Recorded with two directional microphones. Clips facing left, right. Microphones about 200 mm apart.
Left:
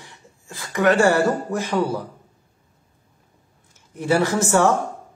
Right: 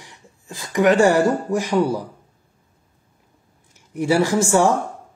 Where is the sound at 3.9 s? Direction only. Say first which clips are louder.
Right 2 dB; 15° right (ahead or behind).